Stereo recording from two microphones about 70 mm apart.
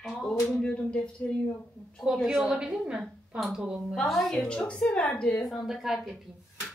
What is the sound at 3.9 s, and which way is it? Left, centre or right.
Speech, centre.